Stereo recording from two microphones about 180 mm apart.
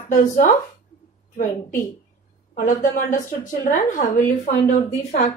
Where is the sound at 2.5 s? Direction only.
45° left (ahead or behind).